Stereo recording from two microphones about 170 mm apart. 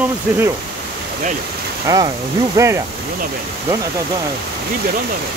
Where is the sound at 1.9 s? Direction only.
20° right (ahead or behind).